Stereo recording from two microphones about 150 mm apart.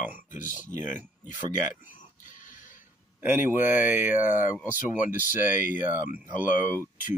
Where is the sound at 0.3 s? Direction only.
60° left (ahead or behind).